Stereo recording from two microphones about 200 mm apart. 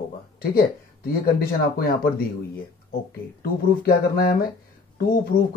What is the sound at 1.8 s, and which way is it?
Speech, 45° left (ahead or behind).